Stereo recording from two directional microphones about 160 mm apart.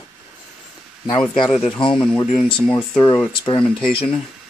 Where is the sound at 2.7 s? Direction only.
30° left (ahead or behind).